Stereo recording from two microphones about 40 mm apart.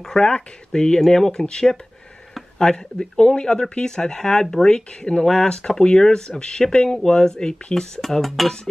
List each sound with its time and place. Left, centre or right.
0.0 s speech: centre
8.0 s speech: centre